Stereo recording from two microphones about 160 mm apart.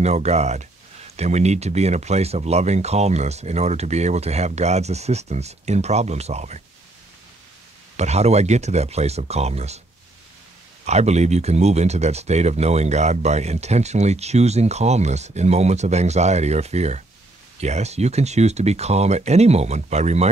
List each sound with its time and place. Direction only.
0.0 s speech: 45° right (ahead or behind)
8.0 s speech: 45° right (ahead or behind)
10.9 s speech: 45° right (ahead or behind)